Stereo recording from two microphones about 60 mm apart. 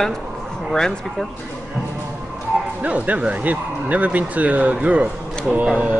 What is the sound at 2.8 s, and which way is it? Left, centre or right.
Speech, right.